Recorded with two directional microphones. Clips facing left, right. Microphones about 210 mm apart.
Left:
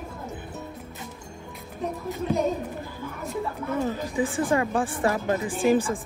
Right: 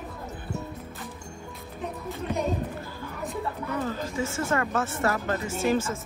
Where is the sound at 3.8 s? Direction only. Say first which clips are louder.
Left 5 dB; 15° left (ahead or behind).